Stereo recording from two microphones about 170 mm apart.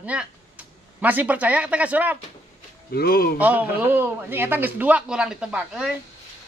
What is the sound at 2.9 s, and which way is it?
Speech, 65° left (ahead or behind).